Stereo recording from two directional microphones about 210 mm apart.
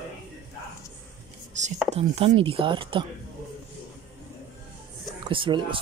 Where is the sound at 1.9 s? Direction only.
30° right (ahead or behind).